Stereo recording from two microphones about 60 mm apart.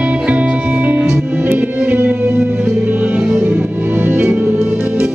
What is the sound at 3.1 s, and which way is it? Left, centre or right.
Music, centre.